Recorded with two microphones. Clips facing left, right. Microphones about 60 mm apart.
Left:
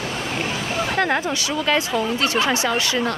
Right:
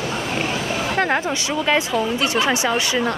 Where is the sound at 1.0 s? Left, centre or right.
Right.